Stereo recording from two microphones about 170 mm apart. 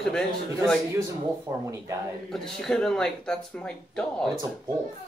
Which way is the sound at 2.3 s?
Centre (ahead or behind).